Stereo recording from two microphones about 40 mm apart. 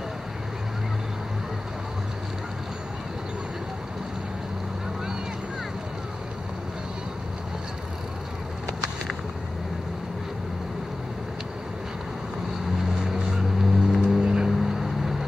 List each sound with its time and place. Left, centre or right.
13.0 s vehicle: centre
14.2 s vehicle: right
14.6 s music: centre